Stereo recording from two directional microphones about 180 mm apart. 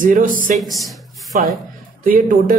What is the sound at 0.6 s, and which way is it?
Speech, centre (ahead or behind).